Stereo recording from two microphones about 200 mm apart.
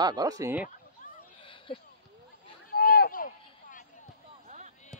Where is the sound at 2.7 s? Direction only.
50° left (ahead or behind).